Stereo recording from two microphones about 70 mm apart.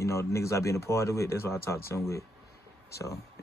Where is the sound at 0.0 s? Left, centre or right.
Left.